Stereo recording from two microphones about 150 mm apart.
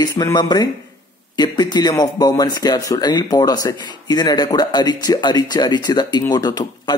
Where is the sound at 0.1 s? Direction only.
25° left (ahead or behind).